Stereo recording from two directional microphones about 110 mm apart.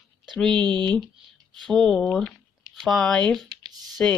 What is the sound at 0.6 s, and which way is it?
Speech, 40° right (ahead or behind).